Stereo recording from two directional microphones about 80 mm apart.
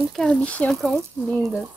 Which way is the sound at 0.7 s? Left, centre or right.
Centre.